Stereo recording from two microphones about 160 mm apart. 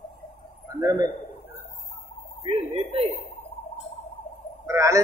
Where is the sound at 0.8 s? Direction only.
20° right (ahead or behind).